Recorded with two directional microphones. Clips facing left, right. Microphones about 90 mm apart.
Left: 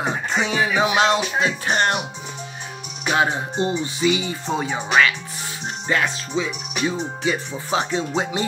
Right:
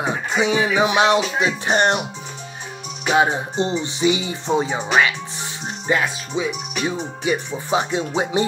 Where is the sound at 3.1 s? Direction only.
20° right (ahead or behind).